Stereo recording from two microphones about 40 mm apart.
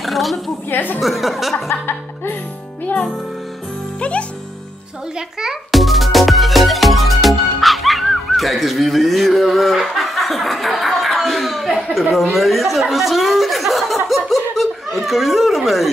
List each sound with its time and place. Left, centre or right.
0.0 s a sound: centre
0.7 s a woman's voice: left
1.0 s speech: centre
1.7 s speech: left
4.0 s music: left
5.1 s a child's voice: centre
5.7 s music: centre
11.7 s a sound: centre